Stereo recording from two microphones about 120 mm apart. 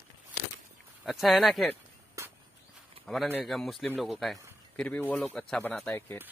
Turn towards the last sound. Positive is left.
turn(degrees=15)  # may be behind; listen again after turning